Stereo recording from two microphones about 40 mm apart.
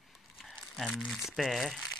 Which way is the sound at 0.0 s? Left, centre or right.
Centre.